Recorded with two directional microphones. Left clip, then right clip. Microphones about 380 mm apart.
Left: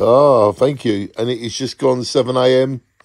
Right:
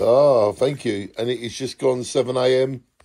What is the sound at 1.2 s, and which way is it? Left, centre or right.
Speech, centre.